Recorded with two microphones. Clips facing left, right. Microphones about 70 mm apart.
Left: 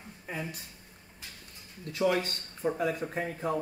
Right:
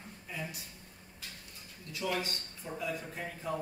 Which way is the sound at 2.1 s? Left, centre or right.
Left.